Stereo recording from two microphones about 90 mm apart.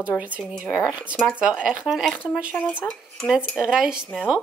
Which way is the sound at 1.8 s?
Centre (ahead or behind).